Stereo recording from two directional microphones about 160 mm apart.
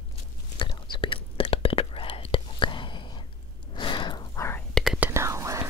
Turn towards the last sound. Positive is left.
turn(degrees=-20)  # may be behind; listen again after turning